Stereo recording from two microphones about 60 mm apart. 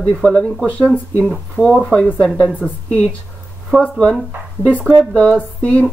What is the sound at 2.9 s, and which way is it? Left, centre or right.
Speech, left.